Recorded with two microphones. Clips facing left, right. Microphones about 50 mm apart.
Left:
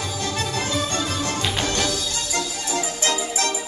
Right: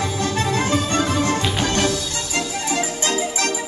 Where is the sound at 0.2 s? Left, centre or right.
Right.